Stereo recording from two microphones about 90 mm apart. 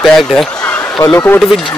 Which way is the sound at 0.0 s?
Centre (ahead or behind).